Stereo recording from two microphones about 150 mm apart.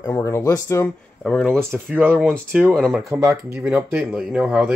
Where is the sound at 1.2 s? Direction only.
5° left (ahead or behind).